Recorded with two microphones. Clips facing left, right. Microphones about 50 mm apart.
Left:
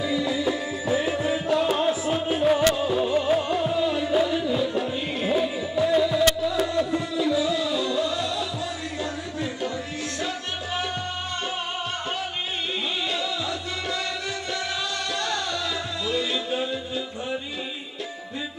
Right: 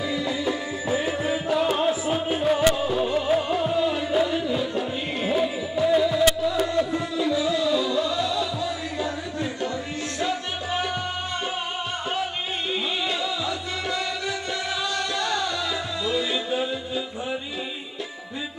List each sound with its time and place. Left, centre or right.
0.0 s music: centre
13.2 s music: centre
15.1 s music: centre